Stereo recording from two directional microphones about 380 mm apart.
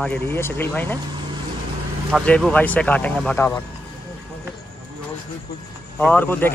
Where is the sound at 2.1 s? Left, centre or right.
Centre.